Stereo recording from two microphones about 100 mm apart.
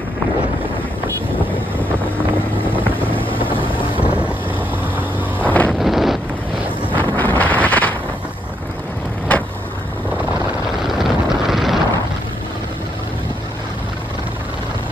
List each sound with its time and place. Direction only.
3.1 s vehicle: 60° left (ahead or behind)
5.4 s wind noise: 15° left (ahead or behind)
5.7 s wind noise: centre (ahead or behind)
7.0 s wind noise: 20° left (ahead or behind)
10.8 s vehicle: centre (ahead or behind)